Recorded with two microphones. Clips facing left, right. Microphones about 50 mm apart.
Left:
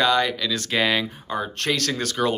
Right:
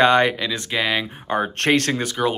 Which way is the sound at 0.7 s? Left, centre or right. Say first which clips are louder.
Left 1 dB; centre.